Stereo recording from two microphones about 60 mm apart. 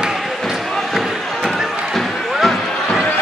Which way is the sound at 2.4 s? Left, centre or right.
Centre.